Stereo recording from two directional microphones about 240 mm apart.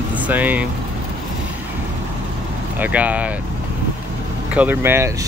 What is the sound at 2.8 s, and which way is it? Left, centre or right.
Speech, centre.